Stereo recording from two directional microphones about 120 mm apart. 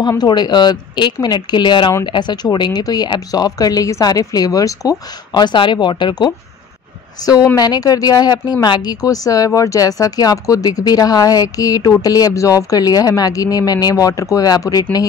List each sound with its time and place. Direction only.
0.2 s speech: 35° left (ahead or behind)